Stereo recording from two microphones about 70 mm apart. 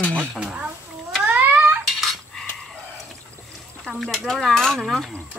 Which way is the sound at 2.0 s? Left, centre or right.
Centre.